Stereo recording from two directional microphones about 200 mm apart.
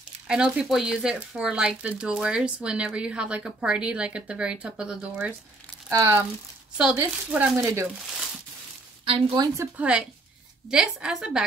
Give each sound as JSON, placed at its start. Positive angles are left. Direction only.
{"t": 0.3, "sound": "speech", "side_deg": 0}
{"t": 9.0, "sound": "speech", "side_deg": -25}
{"t": 9.8, "sound": "speech", "side_deg": -5}